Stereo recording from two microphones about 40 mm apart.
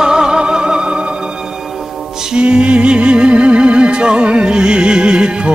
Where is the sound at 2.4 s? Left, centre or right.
Right.